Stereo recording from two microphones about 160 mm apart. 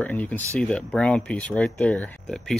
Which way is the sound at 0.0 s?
10° left (ahead or behind).